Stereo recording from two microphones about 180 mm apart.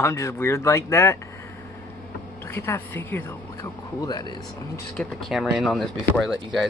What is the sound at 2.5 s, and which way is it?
Speech, 10° left (ahead or behind).